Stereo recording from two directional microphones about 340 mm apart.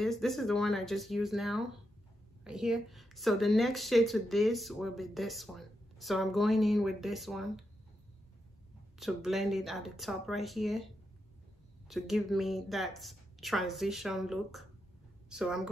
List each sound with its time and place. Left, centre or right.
0.0 s a woman's voice: centre
8.9 s a woman's voice: centre
11.9 s a woman's voice: centre